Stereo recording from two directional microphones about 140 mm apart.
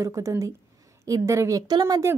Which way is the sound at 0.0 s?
20° right (ahead or behind).